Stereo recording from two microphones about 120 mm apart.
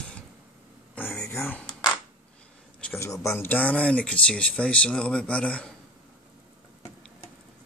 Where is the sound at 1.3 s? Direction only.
20° left (ahead or behind).